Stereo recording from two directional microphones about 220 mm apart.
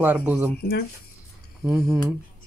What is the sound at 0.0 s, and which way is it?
Speech, 5° right (ahead or behind).